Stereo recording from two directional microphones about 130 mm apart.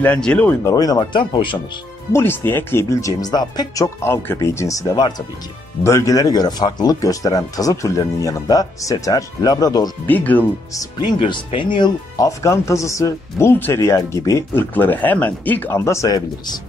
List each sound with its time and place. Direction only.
0.0 s speech: 10° left (ahead or behind)
0.7 s speech: 30° left (ahead or behind)
2.1 s speech: 15° left (ahead or behind)
10.0 s speech: 15° left (ahead or behind)
10.7 s speech: 30° left (ahead or behind)
12.2 s speech: 25° left (ahead or behind)